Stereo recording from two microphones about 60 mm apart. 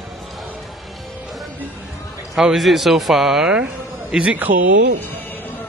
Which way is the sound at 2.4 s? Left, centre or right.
Centre.